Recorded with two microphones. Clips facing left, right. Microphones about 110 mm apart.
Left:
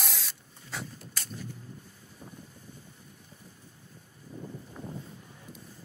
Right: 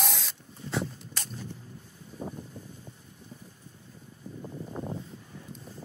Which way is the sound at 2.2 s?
50° right (ahead or behind).